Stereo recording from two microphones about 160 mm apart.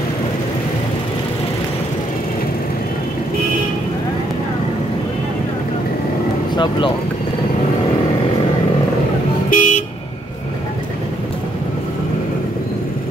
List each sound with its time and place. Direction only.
6.5 s speech: 30° left (ahead or behind)
9.5 s vehicle: 55° left (ahead or behind)